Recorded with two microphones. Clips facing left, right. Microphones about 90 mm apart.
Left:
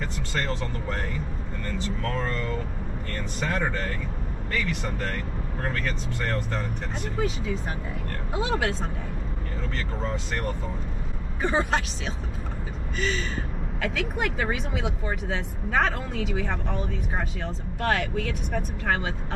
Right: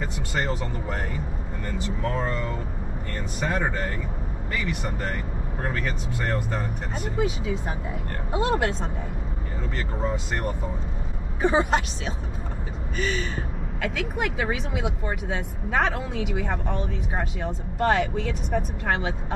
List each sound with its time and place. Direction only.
0.0 s speech: 15° right (ahead or behind)
10.0 s speech: 15° right (ahead or behind)
12.9 s speech: 5° right (ahead or behind)